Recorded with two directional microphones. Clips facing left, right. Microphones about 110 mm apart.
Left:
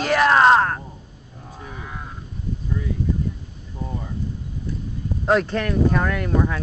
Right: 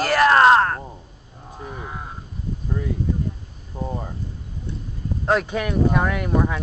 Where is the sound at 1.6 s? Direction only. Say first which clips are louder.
Right 3 dB; 30° right (ahead or behind).